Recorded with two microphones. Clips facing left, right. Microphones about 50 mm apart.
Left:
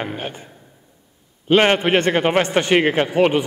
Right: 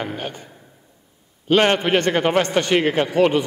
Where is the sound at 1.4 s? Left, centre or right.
Centre.